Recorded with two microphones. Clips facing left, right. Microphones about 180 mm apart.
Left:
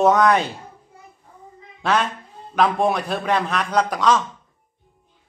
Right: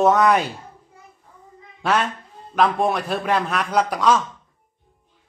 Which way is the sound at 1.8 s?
5° right (ahead or behind).